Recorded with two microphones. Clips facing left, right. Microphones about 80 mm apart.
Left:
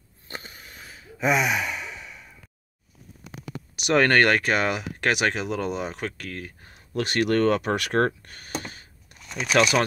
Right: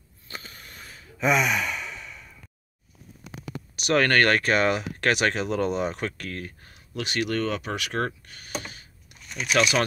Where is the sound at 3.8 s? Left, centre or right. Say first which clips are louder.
Left 2 dB; left; by 6.5 s centre.